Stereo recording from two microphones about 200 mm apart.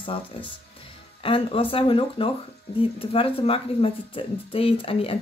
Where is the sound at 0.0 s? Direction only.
25° left (ahead or behind).